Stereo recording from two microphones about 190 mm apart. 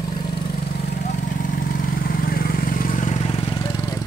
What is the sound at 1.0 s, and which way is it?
Vehicle, 45° left (ahead or behind).